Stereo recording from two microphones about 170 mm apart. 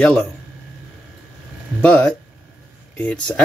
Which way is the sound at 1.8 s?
5° left (ahead or behind).